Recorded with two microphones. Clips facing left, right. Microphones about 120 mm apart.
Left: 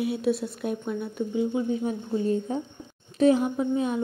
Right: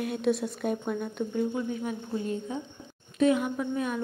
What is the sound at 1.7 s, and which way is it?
A woman's voice, 30° left (ahead or behind).